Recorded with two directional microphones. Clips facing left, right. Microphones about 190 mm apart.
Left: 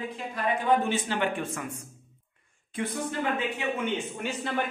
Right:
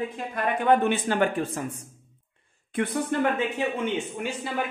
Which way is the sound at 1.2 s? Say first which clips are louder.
Right 5 dB; 35° right (ahead or behind).